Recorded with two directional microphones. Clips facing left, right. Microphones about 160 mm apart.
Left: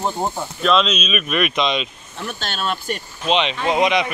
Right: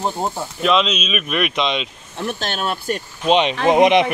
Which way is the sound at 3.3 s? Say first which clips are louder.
Right 4 dB; 45° right (ahead or behind).